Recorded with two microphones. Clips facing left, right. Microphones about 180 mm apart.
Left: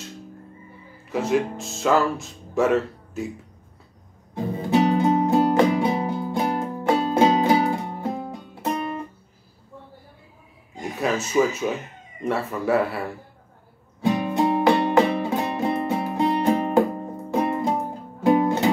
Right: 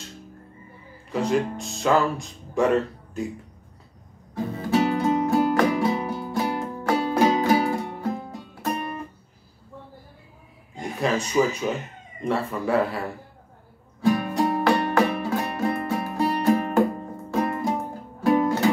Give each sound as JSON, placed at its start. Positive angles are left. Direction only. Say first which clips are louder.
{"t": 1.1, "sound": "speech", "louder": "left 1 dB", "side_deg": 5}
{"t": 4.6, "sound": "music", "louder": "left 3 dB", "side_deg": 20}
{"t": 11.3, "sound": "speech", "louder": "left 3 dB", "side_deg": 10}
{"t": 14.0, "sound": "music", "louder": "left 1 dB", "side_deg": 20}